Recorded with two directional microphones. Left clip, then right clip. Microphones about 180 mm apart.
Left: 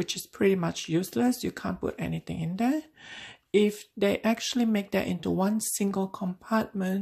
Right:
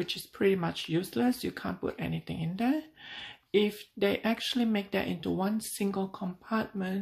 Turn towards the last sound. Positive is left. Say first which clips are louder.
# left 4 dB
turn(degrees=35)  # may be behind; listen again after turning